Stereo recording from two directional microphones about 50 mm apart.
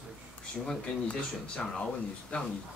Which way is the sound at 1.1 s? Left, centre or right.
Left.